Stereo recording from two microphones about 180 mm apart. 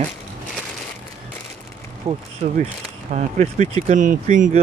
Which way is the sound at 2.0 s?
35° right (ahead or behind).